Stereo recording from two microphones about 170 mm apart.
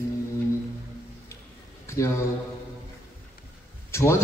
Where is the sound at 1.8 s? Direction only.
15° left (ahead or behind).